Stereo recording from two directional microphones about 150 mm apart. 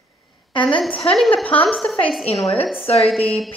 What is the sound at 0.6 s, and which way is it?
A woman's voice, 10° left (ahead or behind).